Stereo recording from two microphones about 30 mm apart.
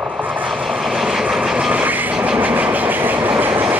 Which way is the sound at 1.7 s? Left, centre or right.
Right.